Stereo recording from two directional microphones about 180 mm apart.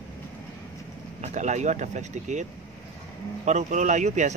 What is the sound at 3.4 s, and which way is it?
Speech, 40° right (ahead or behind).